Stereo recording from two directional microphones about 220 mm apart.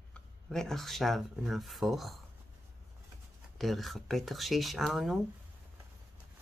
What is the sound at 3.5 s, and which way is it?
Speech, centre (ahead or behind).